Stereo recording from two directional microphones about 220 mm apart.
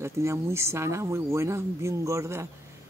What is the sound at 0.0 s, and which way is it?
Speech, 10° right (ahead or behind).